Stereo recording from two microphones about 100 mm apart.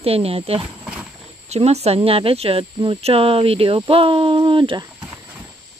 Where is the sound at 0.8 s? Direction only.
10° right (ahead or behind).